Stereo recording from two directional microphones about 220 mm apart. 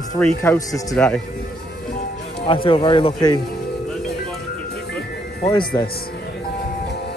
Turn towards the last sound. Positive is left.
turn(degrees=20)  # may be behind; listen again after turning